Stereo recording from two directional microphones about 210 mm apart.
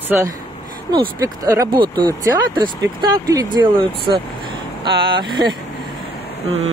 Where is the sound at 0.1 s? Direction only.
10° right (ahead or behind).